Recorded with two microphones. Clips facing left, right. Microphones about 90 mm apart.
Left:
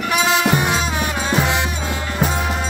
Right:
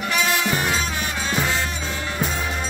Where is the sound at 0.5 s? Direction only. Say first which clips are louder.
Left 4 dB; 20° left (ahead or behind).